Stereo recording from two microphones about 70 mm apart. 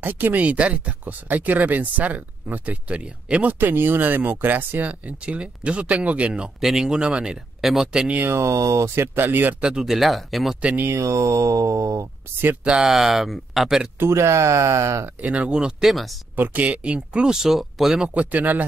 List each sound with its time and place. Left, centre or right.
0.0 s speech: right
3.5 s speech: right; by 8.1 s centre
8.1 s speech: right
8.4 s speech: right
9.6 s speech: centre
10.8 s speech: right
12.6 s speech: centre
13.9 s speech: right
15.2 s speech: centre
16.3 s speech: right; by 18.1 s centre
18.1 s speech: right